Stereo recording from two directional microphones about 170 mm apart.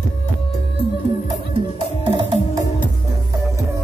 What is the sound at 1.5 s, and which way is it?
Music, 30° right (ahead or behind).